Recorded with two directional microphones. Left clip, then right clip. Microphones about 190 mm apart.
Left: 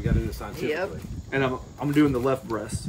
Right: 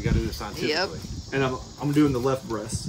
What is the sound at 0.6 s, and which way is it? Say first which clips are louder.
Speech: right 2 dB; 5° right (ahead or behind).